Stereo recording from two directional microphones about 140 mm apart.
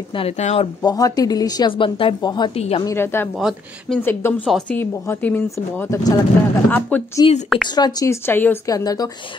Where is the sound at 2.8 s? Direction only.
15° left (ahead or behind).